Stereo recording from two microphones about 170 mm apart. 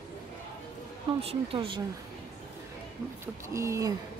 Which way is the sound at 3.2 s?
15° right (ahead or behind).